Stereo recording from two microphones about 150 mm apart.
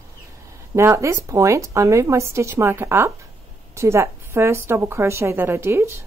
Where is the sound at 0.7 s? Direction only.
20° right (ahead or behind).